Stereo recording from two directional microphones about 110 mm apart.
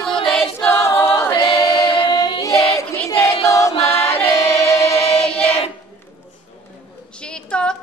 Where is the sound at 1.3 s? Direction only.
55° left (ahead or behind).